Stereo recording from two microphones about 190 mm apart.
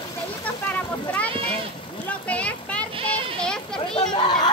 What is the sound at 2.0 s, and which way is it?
Children playing, 5° left (ahead or behind).